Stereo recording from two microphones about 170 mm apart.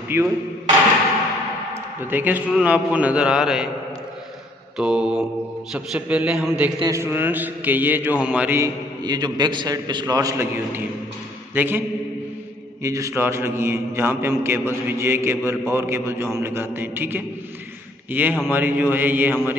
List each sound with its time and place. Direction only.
0.1 s a man's voice: 15° right (ahead or behind)
1.7 s a man's voice: 10° right (ahead or behind)
4.7 s mantra: 5° right (ahead or behind)
5.7 s a man's voice: 5° right (ahead or behind)
6.8 s a man's voice: 15° right (ahead or behind)
12.8 s a man's voice: 20° right (ahead or behind)